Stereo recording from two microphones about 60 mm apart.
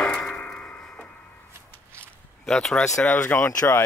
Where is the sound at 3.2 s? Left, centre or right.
Left.